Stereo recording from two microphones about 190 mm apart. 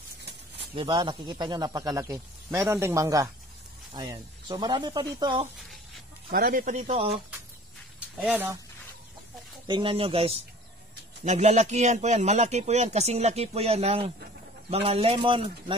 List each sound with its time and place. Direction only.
0.7 s speech: 25° right (ahead or behind)
6.3 s speech: 50° right (ahead or behind)
8.2 s speech: 10° right (ahead or behind)
9.7 s speech: 25° right (ahead or behind)